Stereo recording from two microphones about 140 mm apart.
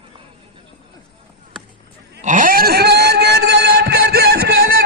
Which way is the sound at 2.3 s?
80° right.